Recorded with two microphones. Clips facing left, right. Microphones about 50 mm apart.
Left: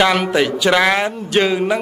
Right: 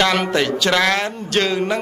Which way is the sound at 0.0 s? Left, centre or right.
Centre.